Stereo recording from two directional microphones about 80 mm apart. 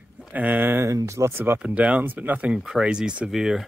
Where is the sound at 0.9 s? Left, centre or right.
Right.